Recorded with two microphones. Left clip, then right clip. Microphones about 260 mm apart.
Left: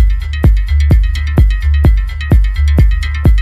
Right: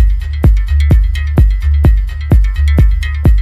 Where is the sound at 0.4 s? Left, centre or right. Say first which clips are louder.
Even; centre.